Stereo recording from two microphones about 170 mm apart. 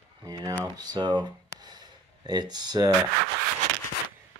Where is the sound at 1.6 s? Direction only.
25° right (ahead or behind).